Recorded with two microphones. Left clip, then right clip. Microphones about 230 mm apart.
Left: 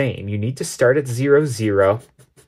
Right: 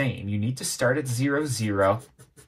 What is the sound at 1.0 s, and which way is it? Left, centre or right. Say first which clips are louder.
Speech: left 10 dB; left.